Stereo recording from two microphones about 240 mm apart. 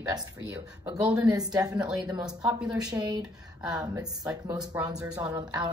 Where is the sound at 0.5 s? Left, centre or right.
Centre.